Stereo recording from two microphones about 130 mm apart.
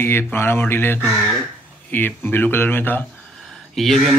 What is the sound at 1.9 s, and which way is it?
Speech, 15° left (ahead or behind).